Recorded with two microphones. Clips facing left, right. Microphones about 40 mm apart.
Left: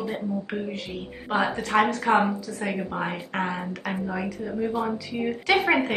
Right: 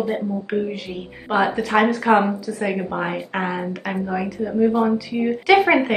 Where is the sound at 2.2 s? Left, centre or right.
Right.